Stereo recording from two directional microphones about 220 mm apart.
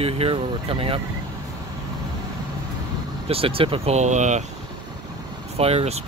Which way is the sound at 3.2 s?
25° right (ahead or behind).